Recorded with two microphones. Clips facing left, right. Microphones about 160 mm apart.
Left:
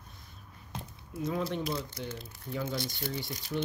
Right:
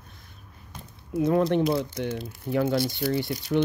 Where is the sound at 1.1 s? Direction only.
65° right (ahead or behind).